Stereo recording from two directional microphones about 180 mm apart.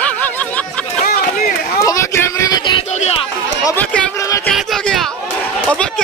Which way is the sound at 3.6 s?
15° left (ahead or behind).